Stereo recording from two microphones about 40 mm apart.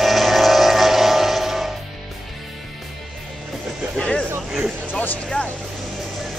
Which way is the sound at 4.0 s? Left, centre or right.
Left.